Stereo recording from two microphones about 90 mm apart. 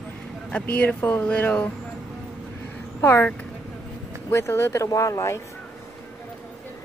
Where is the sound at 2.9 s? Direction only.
30° left (ahead or behind).